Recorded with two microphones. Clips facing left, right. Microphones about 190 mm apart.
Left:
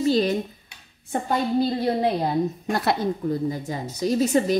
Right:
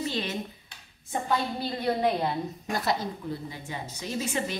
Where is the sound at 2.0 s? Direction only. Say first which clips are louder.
Left 4 dB; 35° left (ahead or behind).